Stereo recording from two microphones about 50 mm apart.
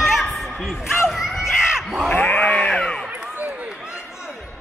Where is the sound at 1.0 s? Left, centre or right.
Centre.